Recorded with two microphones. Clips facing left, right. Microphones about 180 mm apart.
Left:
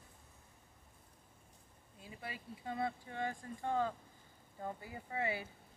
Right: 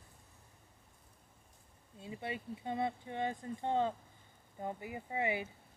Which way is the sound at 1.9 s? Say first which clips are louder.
Right 7 dB; 25° right (ahead or behind).